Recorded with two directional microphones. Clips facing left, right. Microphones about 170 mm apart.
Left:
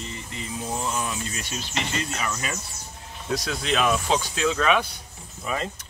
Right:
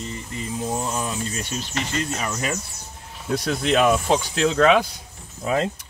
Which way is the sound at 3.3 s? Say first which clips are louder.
Right 4 dB; 50° right (ahead or behind).